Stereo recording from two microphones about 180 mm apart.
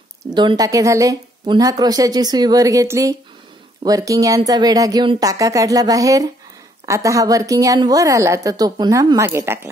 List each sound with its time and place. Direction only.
0.2 s a woman's voice: 25° right (ahead or behind)